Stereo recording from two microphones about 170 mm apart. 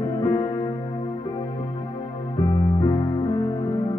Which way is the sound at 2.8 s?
25° left (ahead or behind).